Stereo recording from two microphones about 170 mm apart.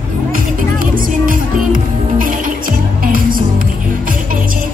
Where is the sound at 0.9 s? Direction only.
55° right (ahead or behind).